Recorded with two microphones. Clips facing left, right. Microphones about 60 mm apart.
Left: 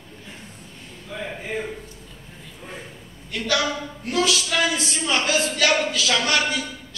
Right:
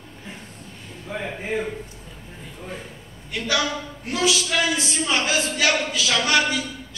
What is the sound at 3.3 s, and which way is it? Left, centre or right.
A man's voice, centre.